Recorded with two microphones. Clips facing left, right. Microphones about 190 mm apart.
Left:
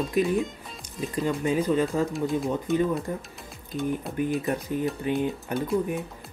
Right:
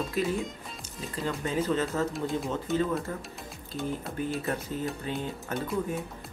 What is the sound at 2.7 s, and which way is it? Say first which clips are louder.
Speech: left 3 dB; centre (ahead or behind).